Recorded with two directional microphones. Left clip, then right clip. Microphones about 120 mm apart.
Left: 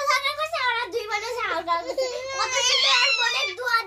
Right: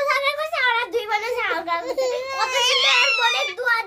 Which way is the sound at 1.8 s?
85° right.